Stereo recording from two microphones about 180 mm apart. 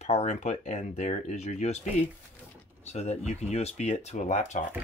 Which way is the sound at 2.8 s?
40° left (ahead or behind).